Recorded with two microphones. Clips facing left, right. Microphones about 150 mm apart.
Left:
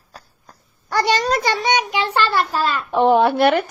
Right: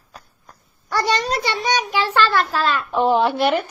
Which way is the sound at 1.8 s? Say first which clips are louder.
Right 1 dB; 15° left (ahead or behind).